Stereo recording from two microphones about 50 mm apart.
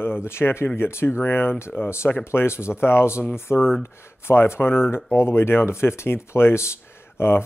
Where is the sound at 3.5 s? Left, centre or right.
Left.